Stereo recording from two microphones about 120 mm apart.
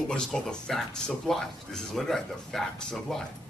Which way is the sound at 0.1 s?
5° left (ahead or behind).